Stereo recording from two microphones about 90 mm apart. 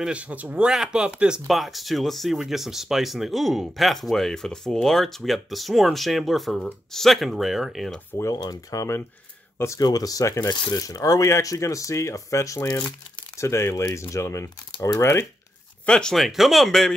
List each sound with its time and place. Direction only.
0.0 s speech: 15° right (ahead or behind)
8.4 s speech: 45° left (ahead or behind)
15.8 s speech: 10° left (ahead or behind)